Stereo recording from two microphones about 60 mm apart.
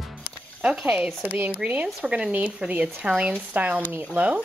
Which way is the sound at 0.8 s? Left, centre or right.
Right.